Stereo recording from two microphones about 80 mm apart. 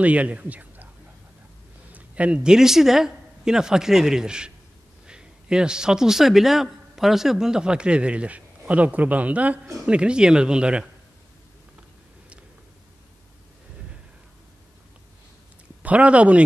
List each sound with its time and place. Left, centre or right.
0.0 s speech: centre
1.9 s a man's voice: centre
15.8 s speech: centre